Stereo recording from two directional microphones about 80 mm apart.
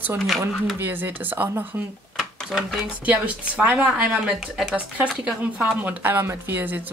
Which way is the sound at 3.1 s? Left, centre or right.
Centre.